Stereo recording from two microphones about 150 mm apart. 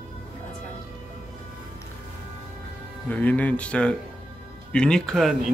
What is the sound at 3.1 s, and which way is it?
Speech, 10° left (ahead or behind).